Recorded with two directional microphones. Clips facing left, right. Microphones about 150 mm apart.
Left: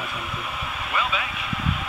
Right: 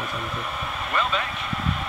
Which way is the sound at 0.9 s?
5° left (ahead or behind).